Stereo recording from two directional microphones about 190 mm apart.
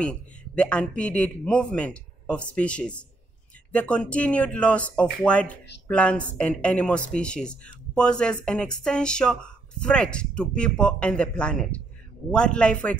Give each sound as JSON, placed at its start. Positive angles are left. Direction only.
{"t": 0.0, "sound": "speech", "side_deg": 5}